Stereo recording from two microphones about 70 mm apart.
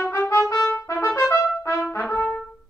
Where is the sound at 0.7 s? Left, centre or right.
Left.